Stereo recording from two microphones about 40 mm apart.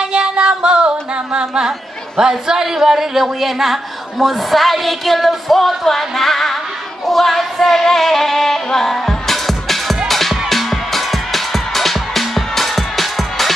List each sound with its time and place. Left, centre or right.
0.0 s music: right
2.1 s a man's voice: centre
8.6 s music: centre